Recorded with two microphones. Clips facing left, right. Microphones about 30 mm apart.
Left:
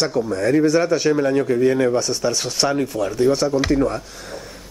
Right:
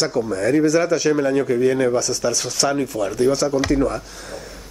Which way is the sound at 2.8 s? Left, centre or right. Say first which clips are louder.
Even; centre.